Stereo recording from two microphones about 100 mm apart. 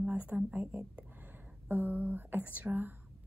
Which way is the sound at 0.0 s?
15° right (ahead or behind).